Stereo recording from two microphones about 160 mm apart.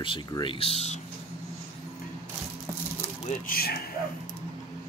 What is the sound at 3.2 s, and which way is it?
Speech, 65° left (ahead or behind).